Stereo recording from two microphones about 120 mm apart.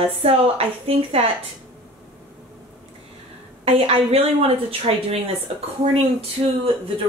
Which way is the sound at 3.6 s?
55° right (ahead or behind).